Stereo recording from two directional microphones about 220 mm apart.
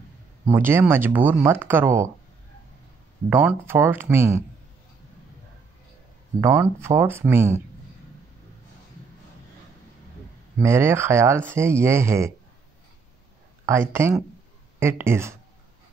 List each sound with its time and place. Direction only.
0.5 s speech: 10° right (ahead or behind)
3.3 s speech: 10° right (ahead or behind)
6.4 s speech: 10° right (ahead or behind)
10.6 s speech: 10° right (ahead or behind)
13.7 s speech: 10° right (ahead or behind)